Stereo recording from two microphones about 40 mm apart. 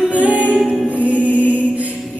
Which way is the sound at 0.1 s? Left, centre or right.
Right.